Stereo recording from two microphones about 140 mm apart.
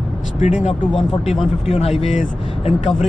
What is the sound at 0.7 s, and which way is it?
Speech, 50° left (ahead or behind).